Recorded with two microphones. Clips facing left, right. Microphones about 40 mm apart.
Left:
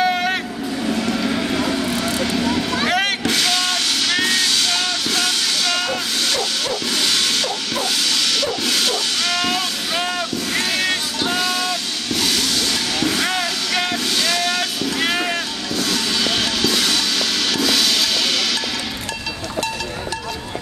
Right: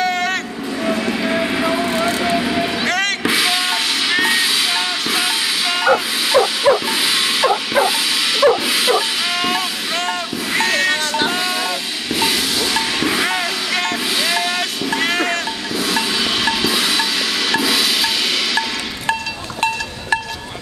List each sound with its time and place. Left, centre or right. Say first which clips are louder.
0.0 s vehicle: even; centre
0.9 s train: right 1 dB; right
2.9 s music: left 1 dB; centre
3.3 s hiss: right 2 dB; centre
8.6 s a sound: right 4 dB; centre
10.5 s sheep: right 5 dB; centre
11.2 s vehicle: right 1 dB; centre
15.0 s music: right 2 dB; centre
17.5 s percussion: right 2 dB; centre